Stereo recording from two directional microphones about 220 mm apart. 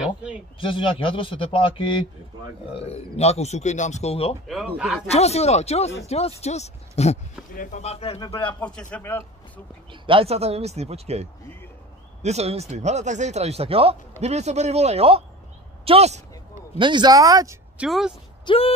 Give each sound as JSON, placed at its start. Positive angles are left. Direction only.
{"t": 0.0, "sound": "speech", "side_deg": -5}
{"t": 0.6, "sound": "a man's voice", "side_deg": 25}
{"t": 4.5, "sound": "speech", "side_deg": 0}
{"t": 5.1, "sound": "a man's voice", "side_deg": 30}
{"t": 8.5, "sound": "speech", "side_deg": 5}
{"t": 10.0, "sound": "a woman's voice", "side_deg": -25}
{"t": 17.8, "sound": "speech", "side_deg": 0}
{"t": 18.4, "sound": "speech", "side_deg": 25}